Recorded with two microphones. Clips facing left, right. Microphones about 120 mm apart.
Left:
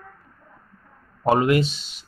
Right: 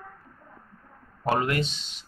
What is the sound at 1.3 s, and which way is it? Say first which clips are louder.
Speech: left 7 dB; 10° left (ahead or behind).